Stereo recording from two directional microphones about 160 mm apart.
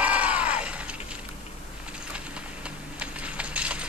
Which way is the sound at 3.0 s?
5° right (ahead or behind).